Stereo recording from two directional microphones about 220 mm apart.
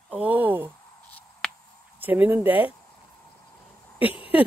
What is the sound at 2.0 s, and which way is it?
Speech, 10° right (ahead or behind).